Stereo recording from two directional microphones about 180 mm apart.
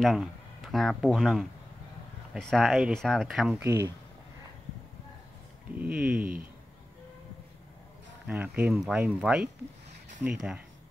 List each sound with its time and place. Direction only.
0.0 s speech: centre (ahead or behind)
3.6 s speech: 20° right (ahead or behind)
5.8 s speech: 5° right (ahead or behind)
8.3 s speech: 10° right (ahead or behind)